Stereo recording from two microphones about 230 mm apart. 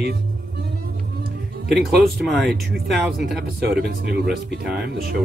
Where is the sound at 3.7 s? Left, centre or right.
Right.